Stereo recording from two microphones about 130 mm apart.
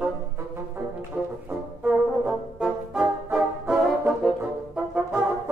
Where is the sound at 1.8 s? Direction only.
10° right (ahead or behind).